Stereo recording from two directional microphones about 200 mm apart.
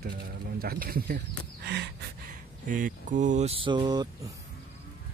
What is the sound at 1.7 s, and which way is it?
Gasp, 55° right (ahead or behind).